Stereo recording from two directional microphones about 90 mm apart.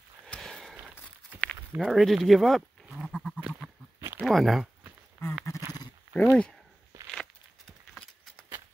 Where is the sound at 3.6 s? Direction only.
30° right (ahead or behind).